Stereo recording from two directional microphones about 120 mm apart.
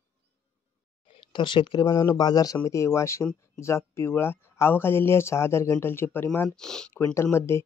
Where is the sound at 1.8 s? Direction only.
25° left (ahead or behind).